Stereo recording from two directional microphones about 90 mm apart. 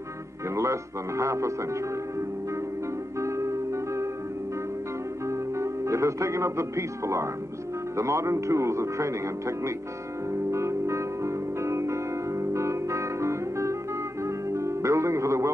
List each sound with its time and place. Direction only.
0.6 s a man's voice: 35° right (ahead or behind)
3.2 s music: 35° right (ahead or behind)
5.6 s a man's voice: 35° right (ahead or behind)
10.3 s music: 35° right (ahead or behind)